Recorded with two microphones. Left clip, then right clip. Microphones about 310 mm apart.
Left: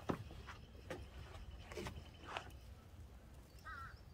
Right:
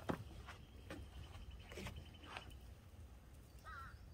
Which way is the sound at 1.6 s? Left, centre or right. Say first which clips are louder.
Left 3 dB; centre.